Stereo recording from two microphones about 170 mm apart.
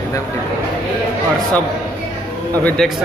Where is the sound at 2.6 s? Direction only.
5° left (ahead or behind).